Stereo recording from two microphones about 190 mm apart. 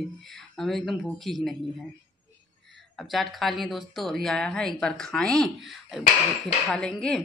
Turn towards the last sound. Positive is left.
turn(degrees=5)  # may be behind; listen again after turning